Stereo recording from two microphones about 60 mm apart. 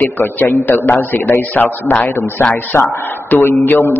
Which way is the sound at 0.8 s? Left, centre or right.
Left.